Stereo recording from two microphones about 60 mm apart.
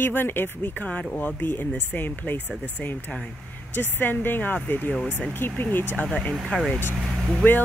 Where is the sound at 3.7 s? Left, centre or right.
Left.